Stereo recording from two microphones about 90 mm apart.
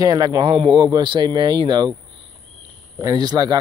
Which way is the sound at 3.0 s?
50° right (ahead or behind).